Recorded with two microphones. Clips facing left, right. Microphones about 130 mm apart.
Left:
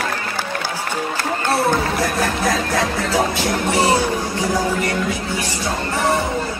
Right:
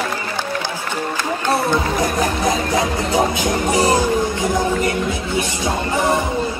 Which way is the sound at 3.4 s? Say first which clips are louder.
Right 1 dB; 40° right (ahead or behind).